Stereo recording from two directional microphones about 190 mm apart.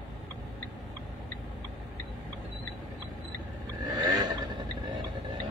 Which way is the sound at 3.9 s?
20° right (ahead or behind).